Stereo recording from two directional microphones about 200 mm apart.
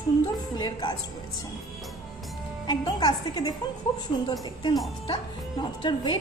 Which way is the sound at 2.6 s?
20° left (ahead or behind).